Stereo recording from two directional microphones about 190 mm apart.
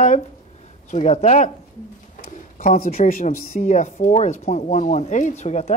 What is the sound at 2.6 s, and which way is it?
Speech, 45° left (ahead or behind).